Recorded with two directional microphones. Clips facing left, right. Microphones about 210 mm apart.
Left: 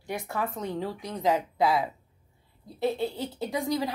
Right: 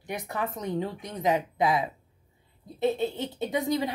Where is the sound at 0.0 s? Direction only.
20° right (ahead or behind).